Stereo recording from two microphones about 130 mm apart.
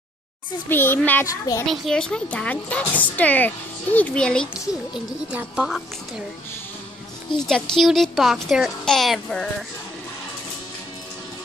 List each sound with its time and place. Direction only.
0.7 s speech: 15° left (ahead or behind)
1.2 s a child's voice: 25° left (ahead or behind)
1.7 s speech: 5° left (ahead or behind)
5.3 s speech: 10° right (ahead or behind)
7.3 s speech: 5° left (ahead or behind)